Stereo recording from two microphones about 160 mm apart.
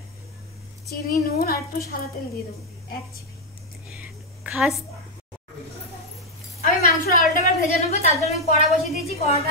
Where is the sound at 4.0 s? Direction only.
5° right (ahead or behind).